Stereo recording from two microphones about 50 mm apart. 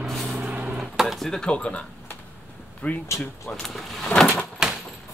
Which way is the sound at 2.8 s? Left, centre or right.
Left.